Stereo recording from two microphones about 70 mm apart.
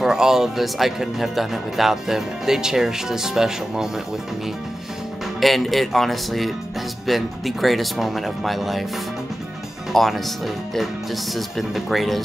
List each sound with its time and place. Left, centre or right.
0.0 s speech: centre
5.4 s speech: centre
9.9 s speech: centre